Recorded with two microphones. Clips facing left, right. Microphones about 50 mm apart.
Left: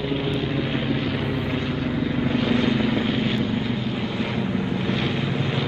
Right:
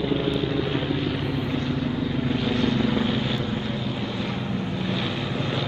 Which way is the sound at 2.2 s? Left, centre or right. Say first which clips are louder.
Left 3 dB; left.